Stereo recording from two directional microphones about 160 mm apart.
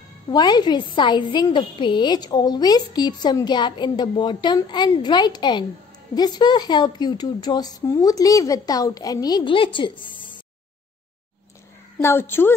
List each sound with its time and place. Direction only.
0.3 s a woman's voice: 25° left (ahead or behind)
12.0 s a woman's voice: 15° left (ahead or behind)